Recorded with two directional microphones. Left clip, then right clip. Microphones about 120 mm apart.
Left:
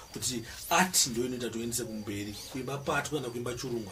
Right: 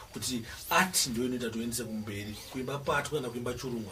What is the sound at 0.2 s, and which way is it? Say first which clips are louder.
Speech: even; 30° left (ahead or behind).